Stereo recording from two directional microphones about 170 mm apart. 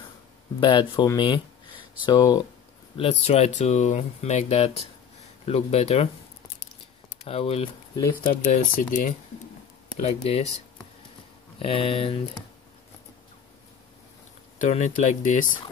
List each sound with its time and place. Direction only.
0.6 s speech: 30° left (ahead or behind)
3.0 s speech: 35° left (ahead or behind)
7.2 s speech: 35° left (ahead or behind)
8.5 s speech: 50° left (ahead or behind)
10.0 s speech: 40° left (ahead or behind)
11.6 s speech: 35° left (ahead or behind)
14.6 s speech: 45° left (ahead or behind)